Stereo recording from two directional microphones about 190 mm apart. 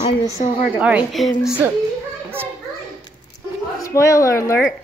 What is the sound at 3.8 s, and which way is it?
Speech, 15° left (ahead or behind).